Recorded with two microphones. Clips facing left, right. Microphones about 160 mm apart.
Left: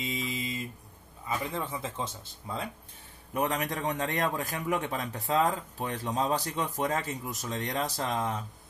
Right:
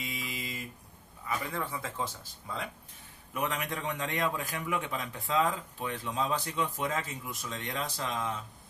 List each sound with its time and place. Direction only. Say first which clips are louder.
0.0 s mantra: left 5 dB; 25° left (ahead or behind)
1.2 s speech: left 2 dB; 20° left (ahead or behind)
3.3 s a man's voice: left 4 dB; 40° left (ahead or behind)